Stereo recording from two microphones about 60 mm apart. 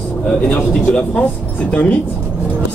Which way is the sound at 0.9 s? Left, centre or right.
Centre.